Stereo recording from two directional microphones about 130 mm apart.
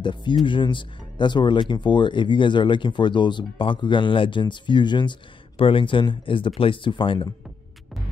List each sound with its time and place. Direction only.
0.0 s speech: 35° left (ahead or behind)